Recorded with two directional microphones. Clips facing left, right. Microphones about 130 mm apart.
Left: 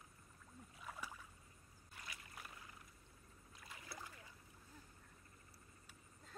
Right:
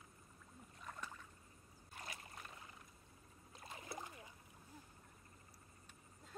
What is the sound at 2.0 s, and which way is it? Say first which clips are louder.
Boat: right 4 dB; 35° right (ahead or behind).